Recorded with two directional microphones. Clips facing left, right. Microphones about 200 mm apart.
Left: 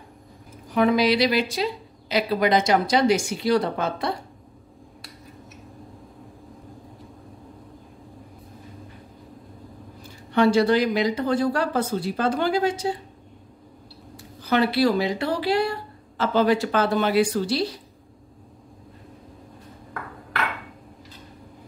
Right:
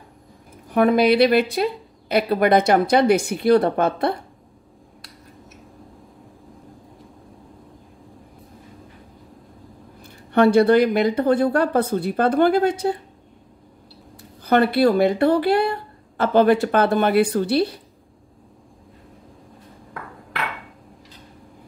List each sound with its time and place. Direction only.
0.7 s a woman's voice: 55° right (ahead or behind)
10.0 s a woman's voice: 55° right (ahead or behind)
14.1 s speech: 55° right (ahead or behind)